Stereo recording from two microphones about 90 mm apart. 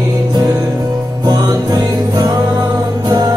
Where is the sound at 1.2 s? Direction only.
45° right (ahead or behind).